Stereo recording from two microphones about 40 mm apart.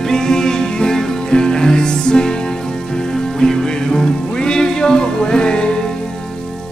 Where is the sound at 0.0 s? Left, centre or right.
Centre.